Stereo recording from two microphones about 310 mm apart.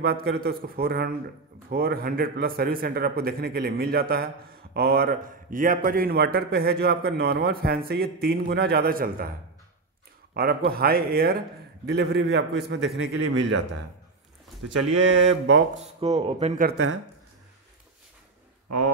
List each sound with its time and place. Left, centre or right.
0.0 s a man's voice: right
10.3 s a man's voice: right
14.6 s speech: right
15.4 s a man's voice: right
15.8 s a man's voice: right